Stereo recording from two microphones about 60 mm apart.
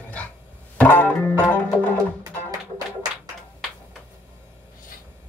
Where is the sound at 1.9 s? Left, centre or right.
Right.